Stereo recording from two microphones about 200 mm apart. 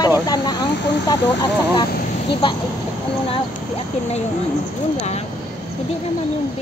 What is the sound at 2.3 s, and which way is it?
Speech, 25° left (ahead or behind).